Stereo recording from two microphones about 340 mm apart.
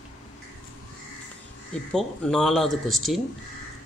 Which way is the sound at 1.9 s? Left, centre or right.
Centre.